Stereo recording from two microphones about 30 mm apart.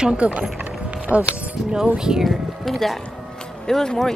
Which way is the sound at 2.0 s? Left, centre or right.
Right.